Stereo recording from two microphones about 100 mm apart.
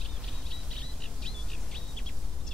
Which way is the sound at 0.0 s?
Centre (ahead or behind).